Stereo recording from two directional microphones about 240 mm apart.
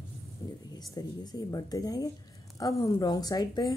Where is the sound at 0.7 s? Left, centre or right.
Centre.